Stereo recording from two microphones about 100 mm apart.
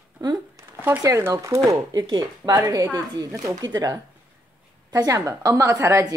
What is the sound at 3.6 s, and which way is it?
Speech, 45° right (ahead or behind).